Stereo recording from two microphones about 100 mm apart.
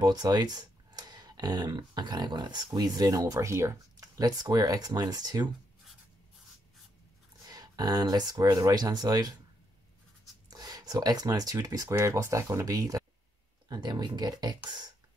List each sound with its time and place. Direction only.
0.0 s speech: 45° right (ahead or behind)
7.4 s speech: 40° right (ahead or behind)
10.5 s speech: 40° right (ahead or behind)